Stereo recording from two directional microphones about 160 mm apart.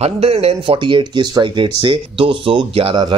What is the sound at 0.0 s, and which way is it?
Speech, 40° right (ahead or behind).